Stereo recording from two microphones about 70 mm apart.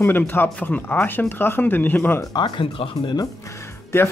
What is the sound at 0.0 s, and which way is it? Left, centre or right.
Speech, left.